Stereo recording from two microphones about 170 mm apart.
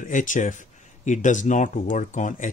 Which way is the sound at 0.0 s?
50° left (ahead or behind).